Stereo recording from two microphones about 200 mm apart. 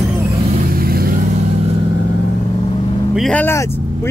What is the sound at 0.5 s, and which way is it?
Vehicle, 50° right (ahead or behind).